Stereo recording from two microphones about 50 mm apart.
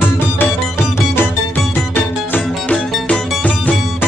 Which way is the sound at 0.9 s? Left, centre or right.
Left.